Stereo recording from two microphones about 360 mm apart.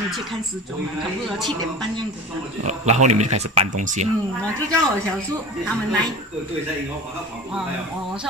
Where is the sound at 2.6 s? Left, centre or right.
Centre.